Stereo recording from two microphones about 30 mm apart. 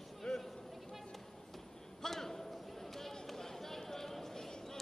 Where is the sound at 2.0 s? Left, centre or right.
Centre.